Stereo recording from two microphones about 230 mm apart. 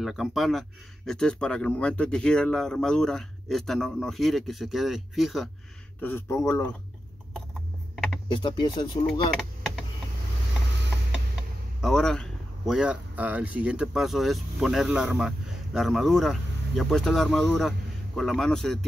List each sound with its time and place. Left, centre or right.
0.0 s speech: centre
7.9 s typing: centre
8.4 s speech: centre
11.8 s speech: centre